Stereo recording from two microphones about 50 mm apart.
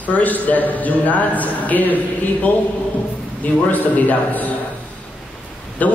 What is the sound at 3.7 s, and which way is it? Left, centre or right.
Speech, left.